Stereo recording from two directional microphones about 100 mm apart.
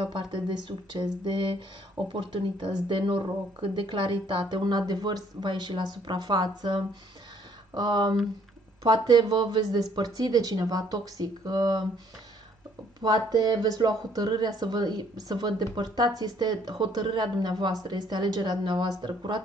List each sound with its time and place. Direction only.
0.0 s speech: 50° right (ahead or behind)
13.0 s speech: 40° right (ahead or behind)